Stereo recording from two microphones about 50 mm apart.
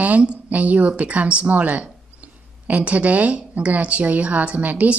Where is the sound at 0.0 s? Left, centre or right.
Right.